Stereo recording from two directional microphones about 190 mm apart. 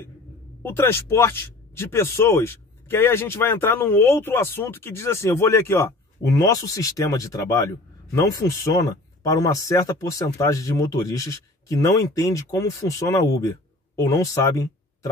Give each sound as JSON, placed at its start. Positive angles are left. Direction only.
{"t": 0.6, "sound": "speech", "side_deg": 10}